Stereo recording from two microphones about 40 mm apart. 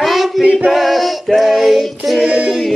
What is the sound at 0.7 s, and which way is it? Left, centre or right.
Music, centre.